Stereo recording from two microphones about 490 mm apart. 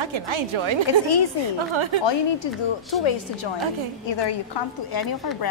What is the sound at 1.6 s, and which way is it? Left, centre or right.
Speech, right.